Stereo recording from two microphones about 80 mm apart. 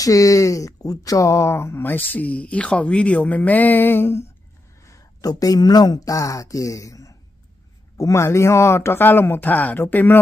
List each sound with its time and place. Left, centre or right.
0.0 s speech: left
4.8 s speech: left